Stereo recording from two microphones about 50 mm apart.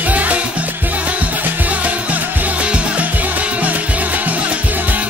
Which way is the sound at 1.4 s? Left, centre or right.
Right.